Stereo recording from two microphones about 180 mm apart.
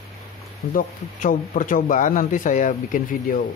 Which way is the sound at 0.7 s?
45° left (ahead or behind).